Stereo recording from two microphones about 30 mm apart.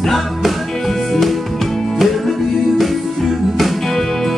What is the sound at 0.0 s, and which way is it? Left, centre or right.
Music, centre.